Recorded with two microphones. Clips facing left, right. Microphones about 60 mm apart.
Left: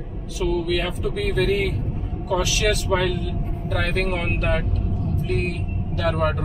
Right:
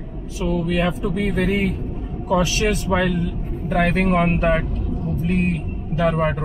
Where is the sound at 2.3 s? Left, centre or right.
Right.